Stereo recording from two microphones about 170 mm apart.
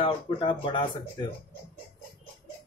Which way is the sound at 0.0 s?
30° left (ahead or behind).